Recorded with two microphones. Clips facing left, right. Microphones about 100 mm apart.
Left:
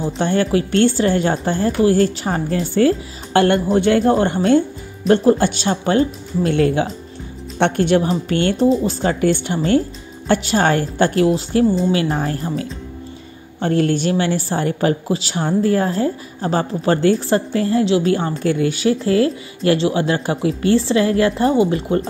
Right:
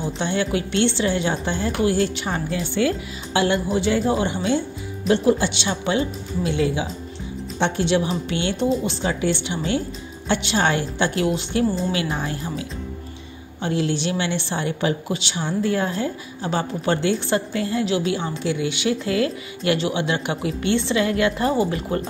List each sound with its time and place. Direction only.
0.0 s a woman's voice: 45° left (ahead or behind)
18.1 s speech: 45° left (ahead or behind); by 22.0 s 30° left (ahead or behind)